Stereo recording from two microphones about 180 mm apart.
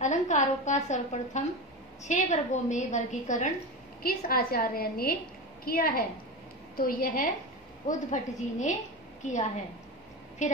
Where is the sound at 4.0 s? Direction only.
55° left (ahead or behind).